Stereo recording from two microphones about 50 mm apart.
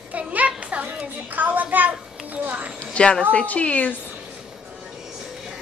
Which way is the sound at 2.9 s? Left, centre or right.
Centre.